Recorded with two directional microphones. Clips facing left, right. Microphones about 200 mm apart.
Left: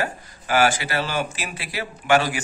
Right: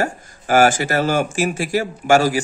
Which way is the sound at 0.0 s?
45° right (ahead or behind).